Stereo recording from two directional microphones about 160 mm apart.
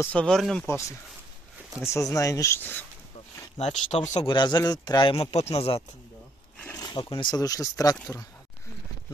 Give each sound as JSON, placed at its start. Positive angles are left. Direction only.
{"t": 0.0, "sound": "speech", "side_deg": 5}
{"t": 0.7, "sound": "speech", "side_deg": 20}
{"t": 3.5, "sound": "speech", "side_deg": 45}
{"t": 4.3, "sound": "speech", "side_deg": 25}